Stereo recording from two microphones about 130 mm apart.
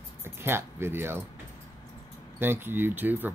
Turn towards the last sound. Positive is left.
turn(degrees=-15)  # may be behind; listen again after turning